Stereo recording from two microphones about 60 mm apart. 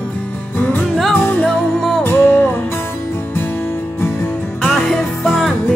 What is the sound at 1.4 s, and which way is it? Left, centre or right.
Music, centre.